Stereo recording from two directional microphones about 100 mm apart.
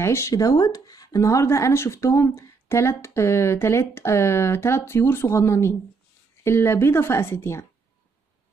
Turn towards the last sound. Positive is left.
turn(degrees=25)  # may be behind; listen again after turning